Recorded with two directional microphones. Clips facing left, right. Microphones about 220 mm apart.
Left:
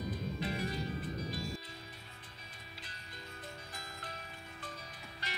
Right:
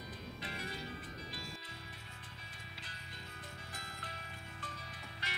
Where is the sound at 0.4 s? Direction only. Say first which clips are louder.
Left 8 dB; 40° left (ahead or behind).